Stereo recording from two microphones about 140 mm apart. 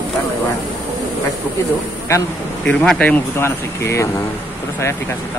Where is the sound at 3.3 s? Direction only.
20° left (ahead or behind).